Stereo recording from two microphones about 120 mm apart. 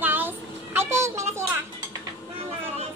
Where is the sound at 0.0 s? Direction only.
15° right (ahead or behind).